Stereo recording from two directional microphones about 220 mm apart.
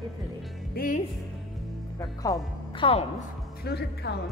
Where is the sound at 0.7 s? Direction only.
40° left (ahead or behind).